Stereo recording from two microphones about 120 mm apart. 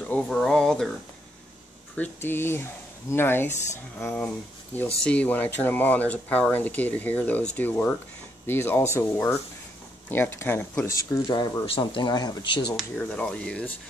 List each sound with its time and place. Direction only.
0.0 s a sound: 10° left (ahead or behind)
2.0 s speech: 20° left (ahead or behind)
11.2 s speech: 45° left (ahead or behind)
12.9 s speech: 10° left (ahead or behind)